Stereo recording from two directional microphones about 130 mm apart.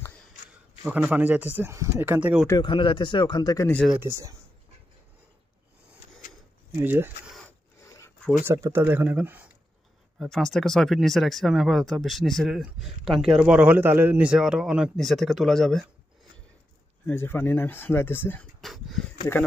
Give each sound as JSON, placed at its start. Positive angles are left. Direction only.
{"t": 0.9, "sound": "speech", "side_deg": -10}
{"t": 2.6, "sound": "speech", "side_deg": 40}
{"t": 4.0, "sound": "speech", "side_deg": -25}
{"t": 6.8, "sound": "speech", "side_deg": -15}
{"t": 7.8, "sound": "a sound", "side_deg": 20}
{"t": 8.4, "sound": "speech", "side_deg": -20}
{"t": 10.1, "sound": "speech", "side_deg": 0}
{"t": 17.0, "sound": "speech", "side_deg": 15}
{"t": 18.6, "sound": "a sound", "side_deg": 0}